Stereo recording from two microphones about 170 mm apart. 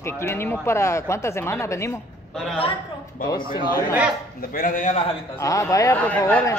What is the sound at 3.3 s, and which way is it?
Speech, 25° left (ahead or behind).